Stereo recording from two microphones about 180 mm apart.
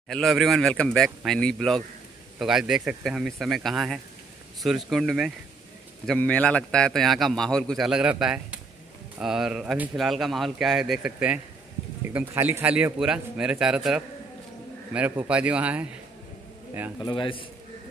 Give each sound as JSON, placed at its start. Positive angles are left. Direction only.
{"t": 0.1, "sound": "a man's voice", "side_deg": 0}
{"t": 17.0, "sound": "a man's voice", "side_deg": 25}